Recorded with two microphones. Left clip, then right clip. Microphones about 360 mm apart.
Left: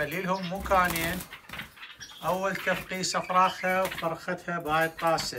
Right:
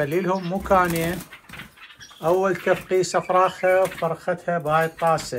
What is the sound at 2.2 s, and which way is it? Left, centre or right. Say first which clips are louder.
Speech: right 8 dB; centre.